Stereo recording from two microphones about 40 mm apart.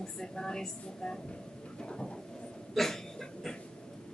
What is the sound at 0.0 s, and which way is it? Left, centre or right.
A woman's voice, centre.